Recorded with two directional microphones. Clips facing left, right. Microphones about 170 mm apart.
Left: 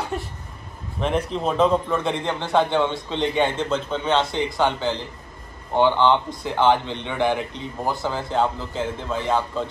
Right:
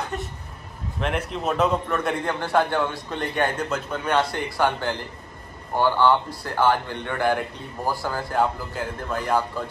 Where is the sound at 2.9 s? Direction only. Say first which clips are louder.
Left 4 dB; 20° left (ahead or behind).